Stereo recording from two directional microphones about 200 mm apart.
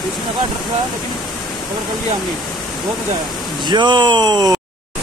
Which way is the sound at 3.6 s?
20° right (ahead or behind).